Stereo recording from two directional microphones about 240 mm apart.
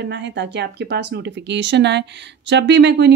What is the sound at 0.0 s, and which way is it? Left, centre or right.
Speech, right.